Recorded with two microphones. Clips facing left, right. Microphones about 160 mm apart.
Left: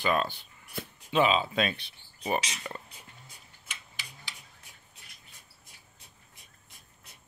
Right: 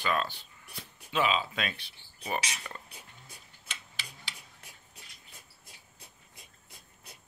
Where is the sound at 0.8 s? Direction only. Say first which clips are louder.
Left 10 dB; 55° left (ahead or behind).